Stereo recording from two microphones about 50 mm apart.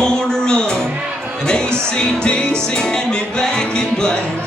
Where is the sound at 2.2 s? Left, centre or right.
Centre.